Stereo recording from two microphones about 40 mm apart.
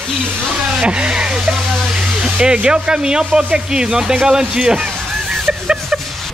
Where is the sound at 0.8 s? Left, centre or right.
Right.